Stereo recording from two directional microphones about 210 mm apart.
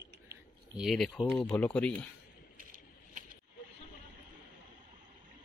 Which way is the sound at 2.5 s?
40° right (ahead or behind).